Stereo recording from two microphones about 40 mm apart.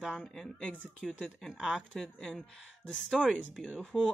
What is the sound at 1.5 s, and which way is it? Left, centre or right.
Speech, right.